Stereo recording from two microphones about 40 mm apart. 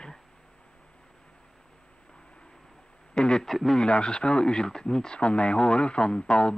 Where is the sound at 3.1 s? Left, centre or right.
Left.